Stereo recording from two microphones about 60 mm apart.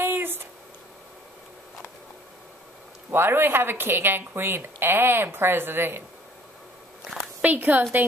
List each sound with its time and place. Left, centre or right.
0.0 s a sound: right
3.1 s speech: right
7.4 s a woman's voice: right